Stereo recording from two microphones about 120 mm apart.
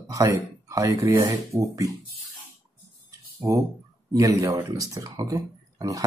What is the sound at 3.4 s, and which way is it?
Speech, 20° right (ahead or behind).